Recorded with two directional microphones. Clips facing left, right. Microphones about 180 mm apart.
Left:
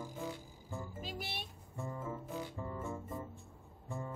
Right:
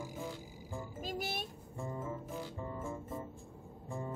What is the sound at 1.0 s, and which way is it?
Music, 45° right (ahead or behind).